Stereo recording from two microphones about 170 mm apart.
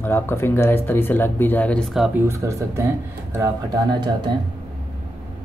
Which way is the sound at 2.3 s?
15° right (ahead or behind).